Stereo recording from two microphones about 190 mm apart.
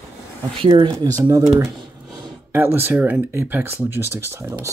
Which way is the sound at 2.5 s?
10° right (ahead or behind).